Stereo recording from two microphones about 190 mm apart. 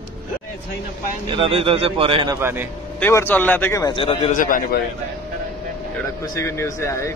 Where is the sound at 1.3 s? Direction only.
30° right (ahead or behind).